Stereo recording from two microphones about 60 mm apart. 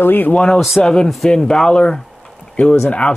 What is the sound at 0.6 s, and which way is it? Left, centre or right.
Speech, centre.